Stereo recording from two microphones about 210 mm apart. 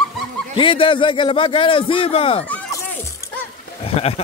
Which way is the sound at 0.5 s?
25° left (ahead or behind).